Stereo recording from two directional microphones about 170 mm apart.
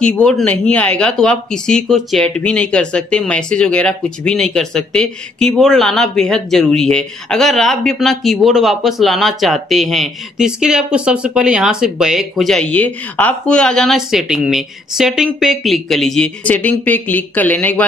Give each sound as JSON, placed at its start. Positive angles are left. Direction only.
{"t": 0.0, "sound": "speech", "side_deg": 5}